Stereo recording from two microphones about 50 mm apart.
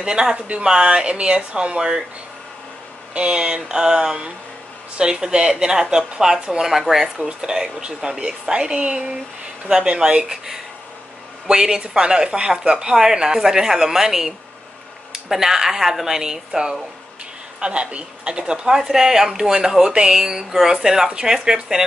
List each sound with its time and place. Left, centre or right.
0.0 s speech: centre
3.2 s speech: centre
6.7 s speech: centre
7.2 s speech: centre